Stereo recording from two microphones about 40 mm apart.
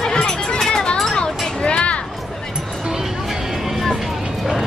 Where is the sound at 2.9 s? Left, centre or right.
Centre.